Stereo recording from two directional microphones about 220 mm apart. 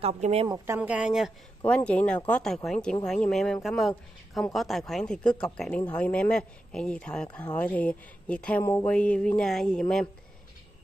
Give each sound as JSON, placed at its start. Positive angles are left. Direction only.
{"t": 0.0, "sound": "speech", "side_deg": -30}
{"t": 0.5, "sound": "speech", "side_deg": -10}